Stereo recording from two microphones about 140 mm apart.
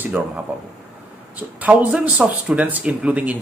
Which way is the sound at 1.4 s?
10° right (ahead or behind).